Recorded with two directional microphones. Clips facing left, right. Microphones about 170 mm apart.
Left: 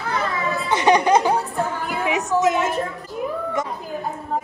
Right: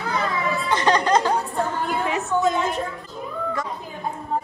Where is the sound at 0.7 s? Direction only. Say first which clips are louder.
Left 4 dB; 10° left (ahead or behind).